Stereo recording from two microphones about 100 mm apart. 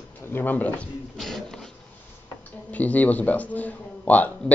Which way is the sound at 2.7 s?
15° left (ahead or behind).